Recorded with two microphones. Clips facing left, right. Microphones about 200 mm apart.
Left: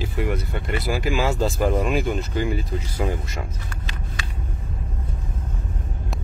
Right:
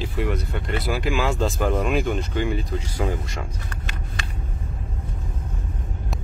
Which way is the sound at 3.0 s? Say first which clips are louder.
Even; 20° left (ahead or behind).